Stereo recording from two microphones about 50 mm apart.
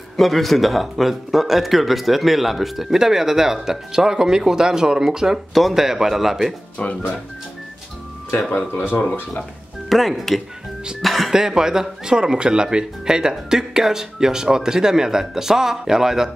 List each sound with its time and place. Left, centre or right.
0.2 s speech: centre
5.5 s speech: centre
6.8 s speech: left
8.5 s speech: left
9.8 s speech: centre
11.3 s speech: centre